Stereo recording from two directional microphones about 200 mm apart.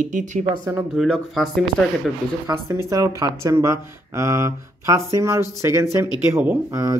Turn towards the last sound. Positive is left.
turn(degrees=-15)  # may be behind; listen again after turning